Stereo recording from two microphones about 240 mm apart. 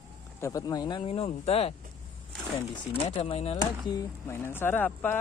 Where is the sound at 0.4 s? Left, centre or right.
Centre.